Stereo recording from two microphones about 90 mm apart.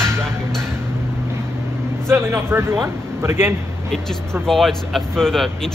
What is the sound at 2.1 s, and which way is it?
Speech, 25° right (ahead or behind).